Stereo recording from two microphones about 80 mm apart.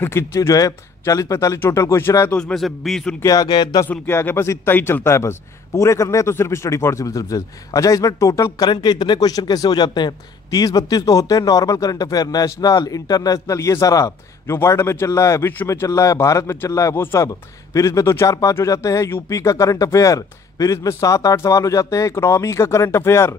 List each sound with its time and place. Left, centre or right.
0.0 s speech: left
0.6 s a man's voice: left
2.3 s a man's voice: centre
3.2 s speech: left
4.1 s speech: left
8.5 s a man's voice: left